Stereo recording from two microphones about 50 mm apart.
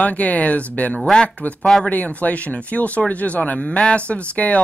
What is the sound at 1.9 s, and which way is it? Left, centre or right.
Speech, left.